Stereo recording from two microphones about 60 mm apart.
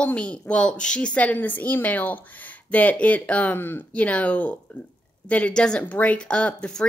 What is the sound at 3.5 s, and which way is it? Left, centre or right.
Speech, left.